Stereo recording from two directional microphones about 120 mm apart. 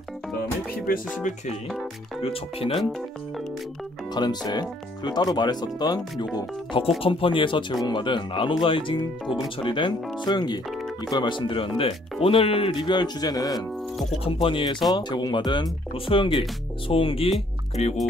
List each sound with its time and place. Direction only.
2.2 s speech: 50° left (ahead or behind)
2.8 s speech: centre (ahead or behind)
4.1 s speech: 35° left (ahead or behind)
14.2 s speech: 45° left (ahead or behind)
17.8 s music: 60° left (ahead or behind)